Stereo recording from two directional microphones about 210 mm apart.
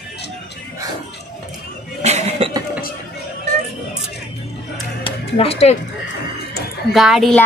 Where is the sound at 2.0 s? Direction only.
30° right (ahead or behind).